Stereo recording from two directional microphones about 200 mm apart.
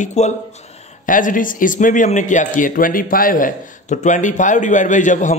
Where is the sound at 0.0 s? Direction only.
35° left (ahead or behind).